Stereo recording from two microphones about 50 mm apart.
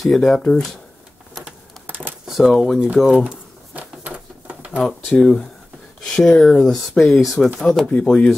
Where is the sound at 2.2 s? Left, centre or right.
Centre.